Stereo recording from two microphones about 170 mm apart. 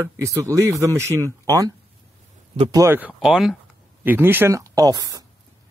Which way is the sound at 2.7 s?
15° right (ahead or behind).